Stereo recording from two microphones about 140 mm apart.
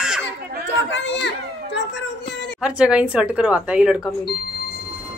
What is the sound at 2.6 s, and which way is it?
Speech, 5° right (ahead or behind).